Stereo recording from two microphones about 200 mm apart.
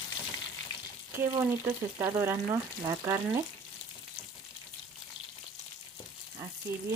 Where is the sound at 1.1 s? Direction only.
10° right (ahead or behind).